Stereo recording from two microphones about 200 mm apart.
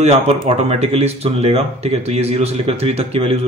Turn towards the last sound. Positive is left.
turn(degrees=-30)  # may be behind; listen again after turning